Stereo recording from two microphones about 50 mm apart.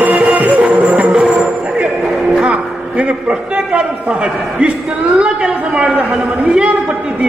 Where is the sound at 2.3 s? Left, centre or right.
Right.